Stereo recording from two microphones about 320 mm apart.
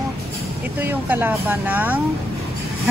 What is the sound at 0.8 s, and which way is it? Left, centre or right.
Speech, centre.